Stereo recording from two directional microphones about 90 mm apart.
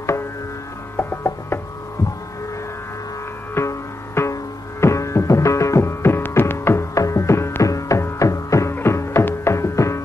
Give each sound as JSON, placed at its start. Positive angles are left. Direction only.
{"t": 0.9, "sound": "mechanisms", "side_deg": 25}
{"t": 3.5, "sound": "music", "side_deg": 30}